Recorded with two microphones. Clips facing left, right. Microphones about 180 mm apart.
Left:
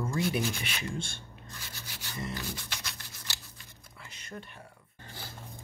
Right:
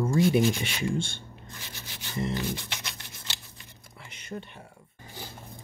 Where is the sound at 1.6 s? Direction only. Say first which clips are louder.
Right 2 dB; 20° right (ahead or behind).